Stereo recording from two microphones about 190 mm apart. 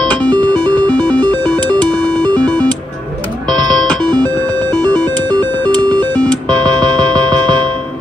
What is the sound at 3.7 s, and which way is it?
Music, 5° left (ahead or behind).